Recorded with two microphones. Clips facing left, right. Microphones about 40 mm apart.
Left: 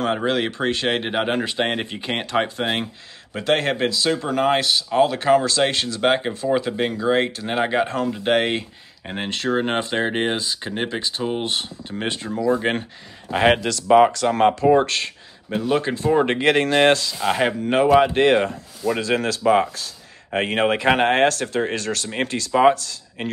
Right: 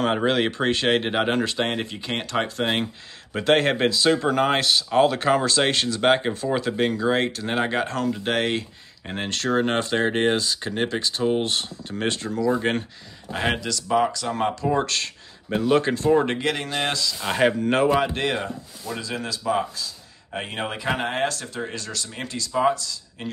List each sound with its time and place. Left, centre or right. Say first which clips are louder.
0.0 s speech: even; centre
2.6 s speech: even; centre
13.3 s speech: left 7 dB; left
14.7 s speech: left 6 dB; left
15.5 s speech: right 1 dB; centre
16.3 s speech: left 7 dB; left
17.2 s speech: left 1 dB; centre
18.1 s speech: left 9 dB; left
18.9 s speech: left 8 dB; left